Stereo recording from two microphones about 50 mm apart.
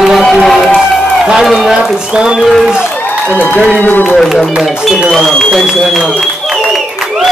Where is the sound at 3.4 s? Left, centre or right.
Left.